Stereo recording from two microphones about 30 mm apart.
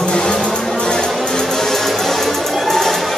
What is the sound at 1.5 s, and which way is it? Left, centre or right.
Music, centre.